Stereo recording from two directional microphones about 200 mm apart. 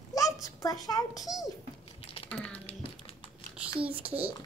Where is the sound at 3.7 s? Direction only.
5° right (ahead or behind).